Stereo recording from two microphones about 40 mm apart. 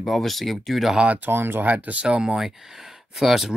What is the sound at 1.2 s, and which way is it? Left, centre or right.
Speech, right.